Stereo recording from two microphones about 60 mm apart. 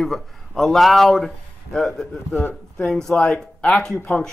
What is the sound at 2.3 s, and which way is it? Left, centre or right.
Speech, left.